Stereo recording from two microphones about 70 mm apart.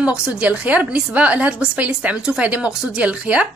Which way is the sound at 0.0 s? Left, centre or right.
Centre.